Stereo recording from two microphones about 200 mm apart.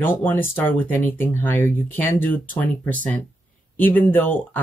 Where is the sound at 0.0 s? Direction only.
10° left (ahead or behind).